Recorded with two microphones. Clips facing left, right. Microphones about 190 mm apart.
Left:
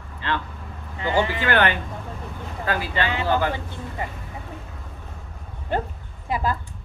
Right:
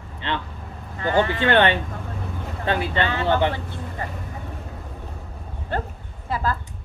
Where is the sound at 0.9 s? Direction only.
15° left (ahead or behind).